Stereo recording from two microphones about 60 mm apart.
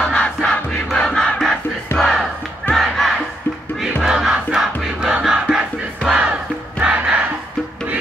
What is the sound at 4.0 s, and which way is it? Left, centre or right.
Crowd, centre.